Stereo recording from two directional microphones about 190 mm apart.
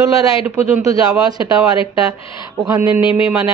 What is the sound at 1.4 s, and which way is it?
A woman's voice, 30° left (ahead or behind).